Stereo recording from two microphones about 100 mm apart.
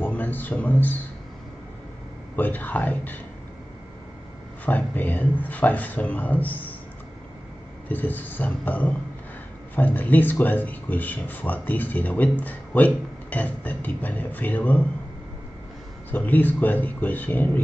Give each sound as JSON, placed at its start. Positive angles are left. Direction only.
{"t": 0.0, "sound": "a sound", "side_deg": 15}
{"t": 2.3, "sound": "speech", "side_deg": 20}
{"t": 4.6, "sound": "speech", "side_deg": 15}
{"t": 7.9, "sound": "speech", "side_deg": 15}
{"t": 16.1, "sound": "speech", "side_deg": 15}